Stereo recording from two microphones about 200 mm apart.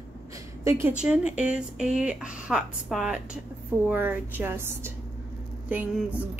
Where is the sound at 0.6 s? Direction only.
15° right (ahead or behind).